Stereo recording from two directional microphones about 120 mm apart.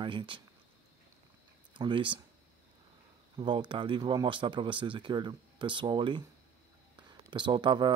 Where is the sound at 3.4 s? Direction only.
40° right (ahead or behind).